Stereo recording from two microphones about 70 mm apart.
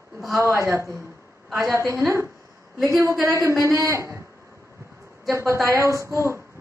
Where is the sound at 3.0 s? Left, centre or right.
Right.